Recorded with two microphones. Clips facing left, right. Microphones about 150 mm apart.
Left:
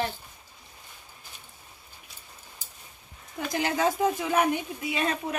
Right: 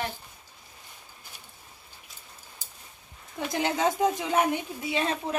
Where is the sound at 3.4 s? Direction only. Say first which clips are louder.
Even; 20° right (ahead or behind).